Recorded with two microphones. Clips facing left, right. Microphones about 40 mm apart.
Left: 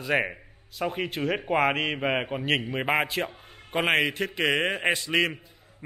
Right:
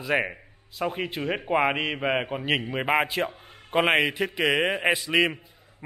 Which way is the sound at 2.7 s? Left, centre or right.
Centre.